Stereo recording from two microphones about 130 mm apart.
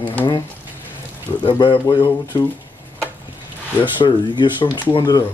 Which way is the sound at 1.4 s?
40° left (ahead or behind).